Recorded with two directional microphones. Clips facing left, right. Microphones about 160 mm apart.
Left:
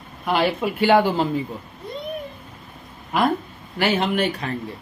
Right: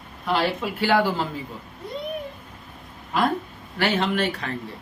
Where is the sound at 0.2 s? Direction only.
15° left (ahead or behind).